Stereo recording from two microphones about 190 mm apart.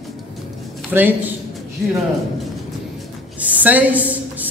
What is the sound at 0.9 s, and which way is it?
Speech, 10° right (ahead or behind).